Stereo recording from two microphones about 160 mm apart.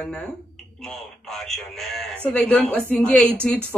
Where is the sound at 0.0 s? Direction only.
10° left (ahead or behind).